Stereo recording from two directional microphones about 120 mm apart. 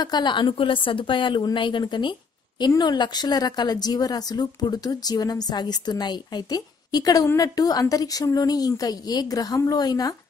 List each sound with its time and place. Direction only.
0.0 s a woman's voice: 35° left (ahead or behind)